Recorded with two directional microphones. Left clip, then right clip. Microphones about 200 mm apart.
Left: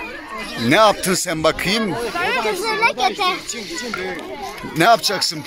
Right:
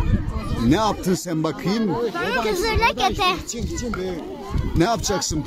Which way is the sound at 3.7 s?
60° right (ahead or behind).